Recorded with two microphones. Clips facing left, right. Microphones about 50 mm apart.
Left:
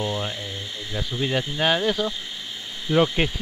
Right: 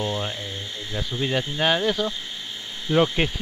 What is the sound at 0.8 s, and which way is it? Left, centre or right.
Speech, left.